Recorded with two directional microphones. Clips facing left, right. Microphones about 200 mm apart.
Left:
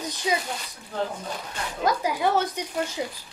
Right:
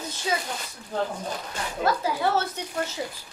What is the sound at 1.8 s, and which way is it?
Speech, 15° left (ahead or behind).